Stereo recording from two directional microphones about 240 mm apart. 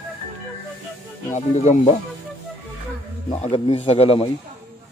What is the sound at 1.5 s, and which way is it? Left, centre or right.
Speech, left.